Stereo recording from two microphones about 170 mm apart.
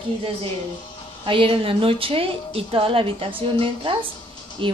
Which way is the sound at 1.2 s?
30° right (ahead or behind).